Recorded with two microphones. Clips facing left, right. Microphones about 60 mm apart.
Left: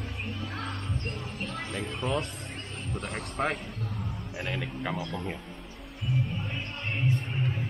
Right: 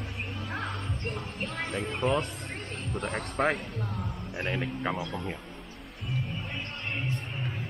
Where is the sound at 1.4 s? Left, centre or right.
Right.